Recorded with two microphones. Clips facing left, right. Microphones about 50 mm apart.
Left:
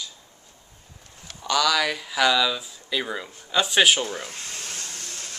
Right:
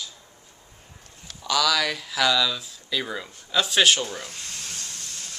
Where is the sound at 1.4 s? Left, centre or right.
Centre.